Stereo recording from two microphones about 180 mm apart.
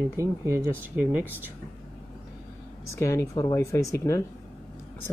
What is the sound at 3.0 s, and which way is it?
Speech, 15° left (ahead or behind).